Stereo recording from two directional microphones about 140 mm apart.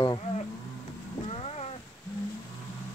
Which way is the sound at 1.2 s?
45° left (ahead or behind).